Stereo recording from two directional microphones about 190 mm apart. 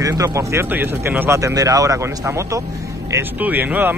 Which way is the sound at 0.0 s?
20° right (ahead or behind).